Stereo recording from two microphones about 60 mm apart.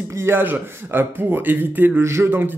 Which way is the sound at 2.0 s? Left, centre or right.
Right.